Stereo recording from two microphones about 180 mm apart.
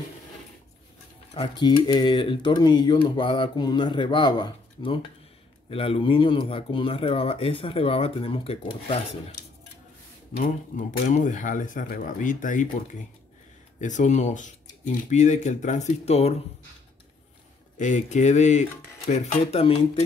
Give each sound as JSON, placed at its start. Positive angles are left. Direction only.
{"t": 1.3, "sound": "speech", "side_deg": 25}
{"t": 10.3, "sound": "speech", "side_deg": 50}
{"t": 13.7, "sound": "speech", "side_deg": 40}
{"t": 17.7, "sound": "speech", "side_deg": 40}